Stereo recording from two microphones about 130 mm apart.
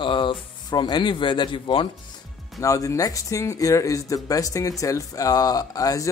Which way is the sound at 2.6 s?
25° left (ahead or behind).